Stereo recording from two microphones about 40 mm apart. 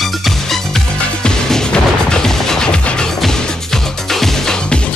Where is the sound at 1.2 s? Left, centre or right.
Centre.